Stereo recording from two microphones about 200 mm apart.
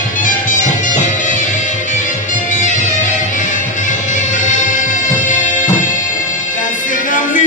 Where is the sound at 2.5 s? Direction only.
40° left (ahead or behind).